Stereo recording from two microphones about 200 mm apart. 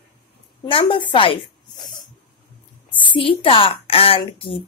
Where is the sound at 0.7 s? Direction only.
25° left (ahead or behind).